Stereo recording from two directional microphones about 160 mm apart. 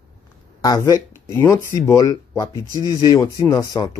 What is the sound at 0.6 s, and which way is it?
Speech, 20° left (ahead or behind).